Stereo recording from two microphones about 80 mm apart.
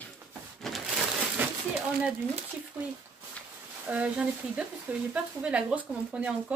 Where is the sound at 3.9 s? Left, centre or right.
Centre.